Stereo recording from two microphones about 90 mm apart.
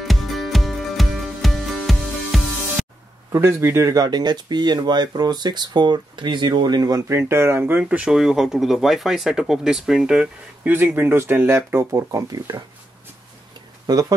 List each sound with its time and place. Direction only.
0.0 s music: centre (ahead or behind)
3.3 s speech: 30° right (ahead or behind)
7.2 s speech: 30° right (ahead or behind)
8.1 s speech: 5° right (ahead or behind)
10.7 s speech: 20° right (ahead or behind); by 12.6 s 45° right (ahead or behind)
13.8 s speech: 45° right (ahead or behind)